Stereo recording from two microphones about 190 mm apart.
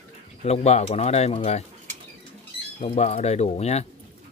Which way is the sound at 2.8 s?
35° left (ahead or behind).